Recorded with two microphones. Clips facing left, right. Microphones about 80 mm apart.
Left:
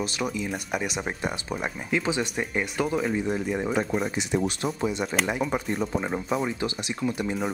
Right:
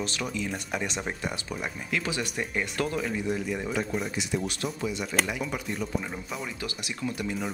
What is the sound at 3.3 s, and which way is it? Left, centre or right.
Speech, left.